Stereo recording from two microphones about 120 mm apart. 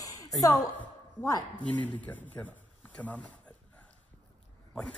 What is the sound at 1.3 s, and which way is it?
Speech, 35° left (ahead or behind).